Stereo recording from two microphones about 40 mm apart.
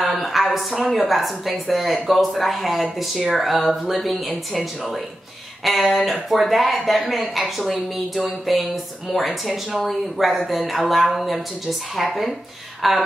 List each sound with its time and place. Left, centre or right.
0.0 s a woman's voice: centre